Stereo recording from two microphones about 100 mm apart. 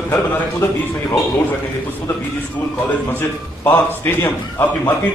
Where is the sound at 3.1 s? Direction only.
25° left (ahead or behind).